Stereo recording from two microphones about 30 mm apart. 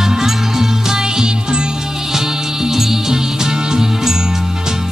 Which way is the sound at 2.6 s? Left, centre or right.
Centre.